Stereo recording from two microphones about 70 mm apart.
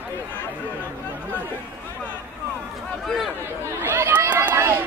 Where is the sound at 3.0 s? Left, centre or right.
Centre.